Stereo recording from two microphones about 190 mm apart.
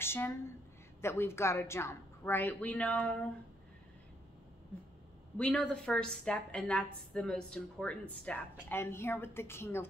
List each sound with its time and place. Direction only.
0.0 s a sound: 10° left (ahead or behind)
1.0 s a woman's voice: 15° left (ahead or behind)
5.4 s a woman's voice: 5° left (ahead or behind)